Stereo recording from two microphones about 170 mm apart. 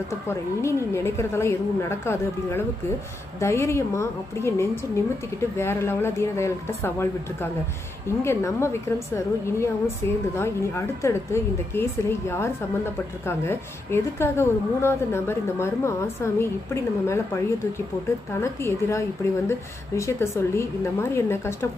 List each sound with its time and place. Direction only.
0.3 s a woman's voice: 15° left (ahead or behind)
8.2 s a woman's voice: 15° left (ahead or behind)
18.4 s a woman's voice: 15° left (ahead or behind)